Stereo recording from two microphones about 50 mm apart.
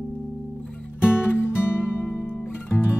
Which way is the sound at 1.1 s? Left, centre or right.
Left.